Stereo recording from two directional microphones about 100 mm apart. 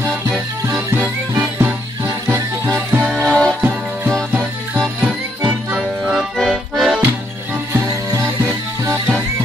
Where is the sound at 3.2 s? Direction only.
10° left (ahead or behind).